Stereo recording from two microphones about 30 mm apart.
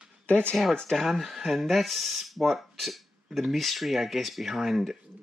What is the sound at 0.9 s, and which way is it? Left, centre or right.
Speech, centre.